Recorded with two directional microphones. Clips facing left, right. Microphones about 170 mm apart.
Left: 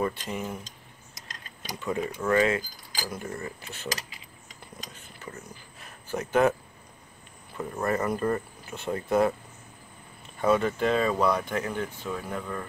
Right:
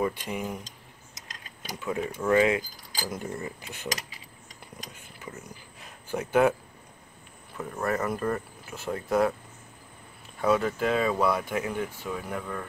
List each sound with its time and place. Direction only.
0.0 s speech: 10° right (ahead or behind)
1.6 s speech: 5° right (ahead or behind)
4.9 s mechanisms: 10° right (ahead or behind)
7.5 s speech: centre (ahead or behind)
10.4 s speech: centre (ahead or behind)